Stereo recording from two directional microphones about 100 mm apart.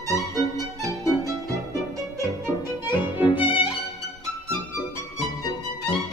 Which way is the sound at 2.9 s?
20° right (ahead or behind).